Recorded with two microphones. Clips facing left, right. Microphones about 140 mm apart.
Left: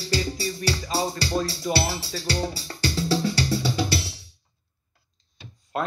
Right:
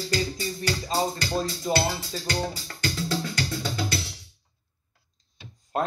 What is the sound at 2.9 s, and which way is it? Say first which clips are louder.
Music: left 6 dB; 35° left (ahead or behind).